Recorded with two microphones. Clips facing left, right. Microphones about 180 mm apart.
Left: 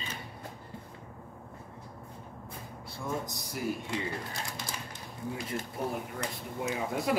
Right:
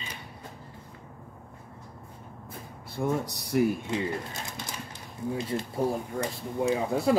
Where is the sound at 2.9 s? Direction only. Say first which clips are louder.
Right 7 dB; 65° right (ahead or behind).